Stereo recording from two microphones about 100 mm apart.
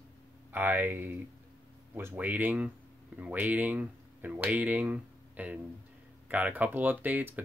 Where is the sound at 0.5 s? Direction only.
20° right (ahead or behind).